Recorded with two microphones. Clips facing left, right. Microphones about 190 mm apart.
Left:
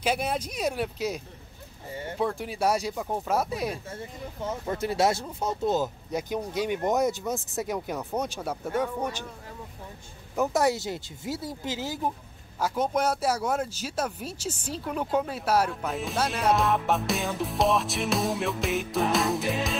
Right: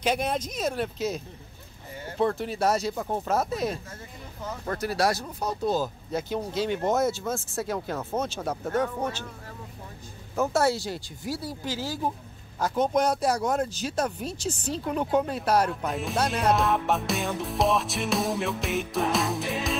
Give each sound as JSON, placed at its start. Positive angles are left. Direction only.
{"t": 0.0, "sound": "speech", "side_deg": 5}
{"t": 3.9, "sound": "speech", "side_deg": 25}
{"t": 10.3, "sound": "speech", "side_deg": 15}
{"t": 12.5, "sound": "speech", "side_deg": 10}